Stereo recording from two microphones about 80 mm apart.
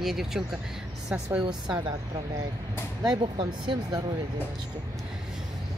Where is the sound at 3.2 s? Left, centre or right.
Right.